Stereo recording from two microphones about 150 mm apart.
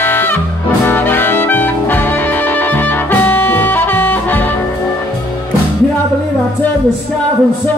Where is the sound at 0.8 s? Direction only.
15° left (ahead or behind).